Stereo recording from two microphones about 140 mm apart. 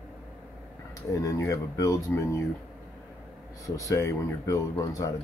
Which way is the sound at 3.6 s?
25° left (ahead or behind).